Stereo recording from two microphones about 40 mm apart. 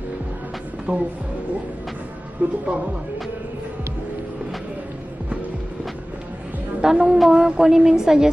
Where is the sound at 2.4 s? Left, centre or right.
Right.